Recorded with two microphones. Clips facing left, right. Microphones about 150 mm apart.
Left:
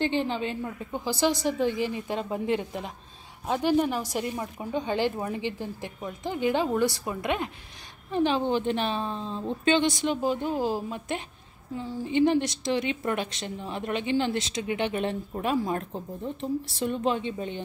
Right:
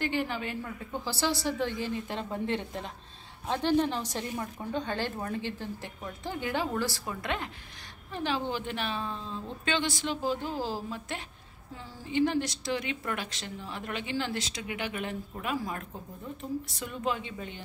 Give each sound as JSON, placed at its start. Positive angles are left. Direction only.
{"t": 0.0, "sound": "a woman's voice", "side_deg": 25}